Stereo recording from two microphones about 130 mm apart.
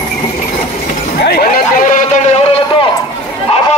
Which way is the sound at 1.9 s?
70° left (ahead or behind).